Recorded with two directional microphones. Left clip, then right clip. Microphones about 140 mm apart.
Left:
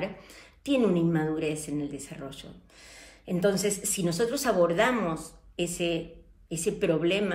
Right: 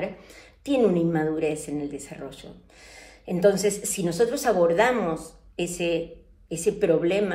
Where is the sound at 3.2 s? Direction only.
40° left (ahead or behind).